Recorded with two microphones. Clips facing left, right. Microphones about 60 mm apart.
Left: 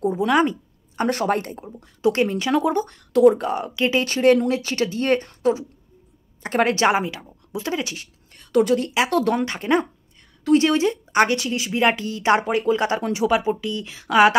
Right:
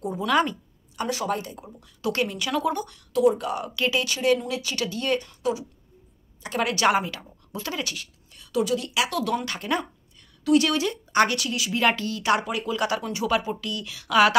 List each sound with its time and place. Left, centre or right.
0.3 s speech: left
0.9 s speech: left
2.0 s speech: left
2.9 s speech: left
3.4 s speech: left
4.0 s speech: left
8.3 s a woman's voice: left
9.4 s speech: left